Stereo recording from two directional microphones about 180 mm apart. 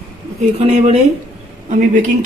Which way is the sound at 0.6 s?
35° right (ahead or behind).